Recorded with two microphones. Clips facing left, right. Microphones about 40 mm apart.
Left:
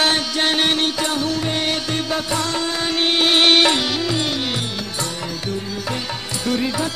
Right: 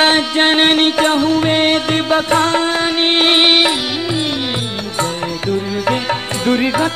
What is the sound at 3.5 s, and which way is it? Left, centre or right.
Music, centre.